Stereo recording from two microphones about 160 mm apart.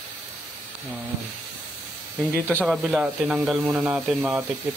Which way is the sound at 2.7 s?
Centre (ahead or behind).